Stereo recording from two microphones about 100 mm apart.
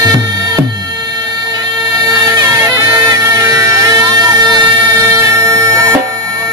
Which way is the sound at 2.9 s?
35° right (ahead or behind).